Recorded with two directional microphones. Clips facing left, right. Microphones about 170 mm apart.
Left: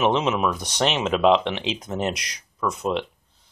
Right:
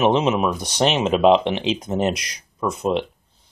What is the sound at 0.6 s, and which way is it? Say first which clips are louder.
Speech: right 4 dB; 10° right (ahead or behind).